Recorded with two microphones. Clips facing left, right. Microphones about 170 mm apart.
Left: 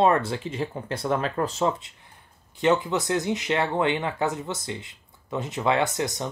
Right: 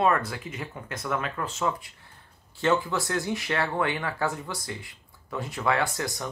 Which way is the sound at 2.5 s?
20° left (ahead or behind).